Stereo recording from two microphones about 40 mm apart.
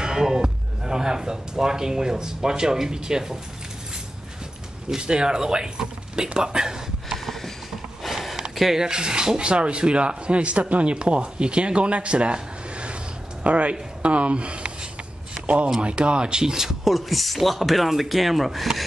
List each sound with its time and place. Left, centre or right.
0.0 s speech: centre
4.8 s speech: centre
8.0 s a sound: centre
8.5 s speech: centre
8.8 s speech: right; by 18.9 s centre